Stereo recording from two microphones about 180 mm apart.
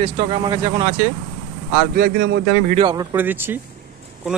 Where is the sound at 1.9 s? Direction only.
60° right (ahead or behind).